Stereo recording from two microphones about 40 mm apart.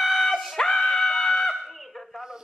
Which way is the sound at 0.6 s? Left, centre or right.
Centre.